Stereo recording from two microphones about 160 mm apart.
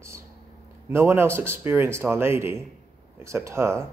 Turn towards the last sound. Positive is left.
turn(degrees=-15)  # may be behind; listen again after turning